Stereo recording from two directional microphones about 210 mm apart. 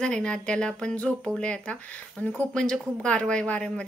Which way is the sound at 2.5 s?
5° left (ahead or behind).